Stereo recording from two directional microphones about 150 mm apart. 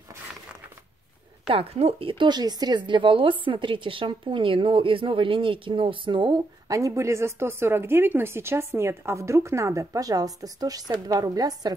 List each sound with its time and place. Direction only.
1.5 s a woman's voice: 40° right (ahead or behind); by 11.7 s 25° right (ahead or behind)